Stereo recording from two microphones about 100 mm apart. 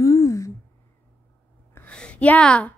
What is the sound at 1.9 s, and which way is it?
Speech, 10° left (ahead or behind).